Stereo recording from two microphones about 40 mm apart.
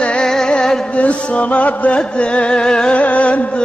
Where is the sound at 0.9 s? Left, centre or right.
Left.